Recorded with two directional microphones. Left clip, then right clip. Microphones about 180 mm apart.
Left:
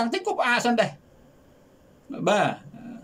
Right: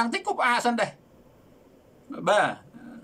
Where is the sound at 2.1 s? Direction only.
20° left (ahead or behind).